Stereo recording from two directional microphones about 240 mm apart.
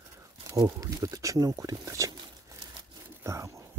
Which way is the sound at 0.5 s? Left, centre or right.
Centre.